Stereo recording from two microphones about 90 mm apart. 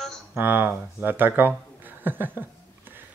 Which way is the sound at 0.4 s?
25° right (ahead or behind).